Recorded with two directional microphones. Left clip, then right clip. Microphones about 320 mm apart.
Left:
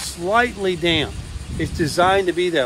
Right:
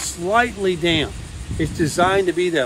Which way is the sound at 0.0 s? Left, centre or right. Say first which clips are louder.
Even; centre.